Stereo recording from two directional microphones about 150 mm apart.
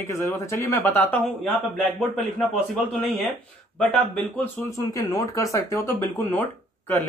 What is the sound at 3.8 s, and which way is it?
Speech, 10° left (ahead or behind).